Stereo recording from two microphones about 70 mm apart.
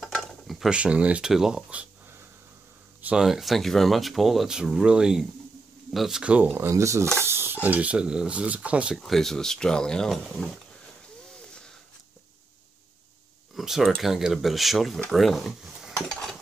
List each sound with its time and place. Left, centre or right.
0.0 s stir: centre
0.7 s speech: centre
1.2 s speech: centre
3.2 s speech: centre
6.2 s speech: centre
6.7 s a sound: right
7.2 s speech: right; by 8.9 s centre
8.9 s speech: centre
13.6 s a sound: centre
14.0 s speech: centre
16.1 s a sound: centre